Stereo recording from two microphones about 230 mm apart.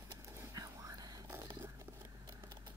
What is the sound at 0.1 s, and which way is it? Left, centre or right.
Whispering, centre.